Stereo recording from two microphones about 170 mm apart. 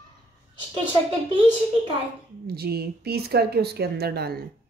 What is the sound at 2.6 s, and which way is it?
Speech, 65° right (ahead or behind).